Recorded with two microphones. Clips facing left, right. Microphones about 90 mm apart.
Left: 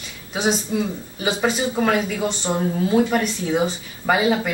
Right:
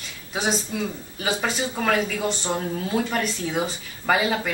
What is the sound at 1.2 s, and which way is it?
Speech, 15° left (ahead or behind).